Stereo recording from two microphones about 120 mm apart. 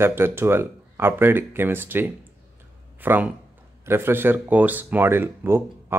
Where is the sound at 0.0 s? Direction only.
20° right (ahead or behind).